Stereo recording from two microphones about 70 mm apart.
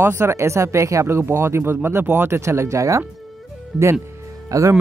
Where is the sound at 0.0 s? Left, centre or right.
Right.